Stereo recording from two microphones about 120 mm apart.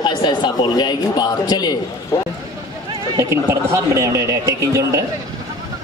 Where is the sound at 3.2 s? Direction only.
20° right (ahead or behind).